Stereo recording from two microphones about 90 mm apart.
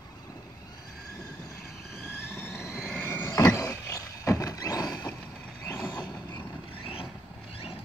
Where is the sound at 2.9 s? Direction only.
25° left (ahead or behind); by 4.9 s 45° left (ahead or behind).